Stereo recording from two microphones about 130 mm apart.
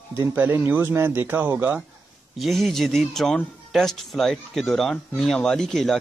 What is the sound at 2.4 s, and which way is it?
Speech, centre (ahead or behind).